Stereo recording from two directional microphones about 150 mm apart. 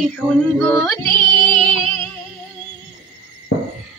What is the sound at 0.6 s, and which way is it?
Music, 20° left (ahead or behind).